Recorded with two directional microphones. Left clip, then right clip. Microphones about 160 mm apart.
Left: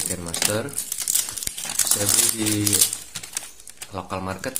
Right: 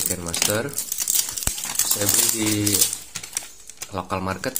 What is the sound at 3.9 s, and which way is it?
Speech, 20° right (ahead or behind).